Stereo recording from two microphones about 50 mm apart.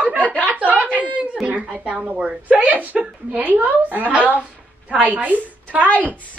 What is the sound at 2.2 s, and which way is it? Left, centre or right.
A woman's voice, right.